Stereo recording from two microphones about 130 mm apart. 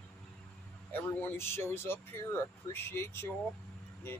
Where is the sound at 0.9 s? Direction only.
15° left (ahead or behind).